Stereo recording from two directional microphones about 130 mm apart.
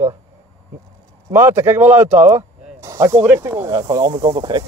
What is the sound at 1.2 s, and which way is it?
A man's voice, 20° right (ahead or behind).